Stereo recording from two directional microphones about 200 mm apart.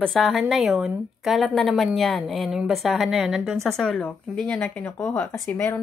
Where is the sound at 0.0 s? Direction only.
Centre (ahead or behind).